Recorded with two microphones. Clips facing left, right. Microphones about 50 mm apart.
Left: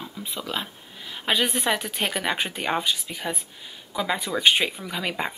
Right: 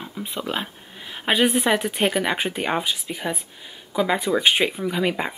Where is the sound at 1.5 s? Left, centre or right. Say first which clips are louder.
Right 5 dB; centre.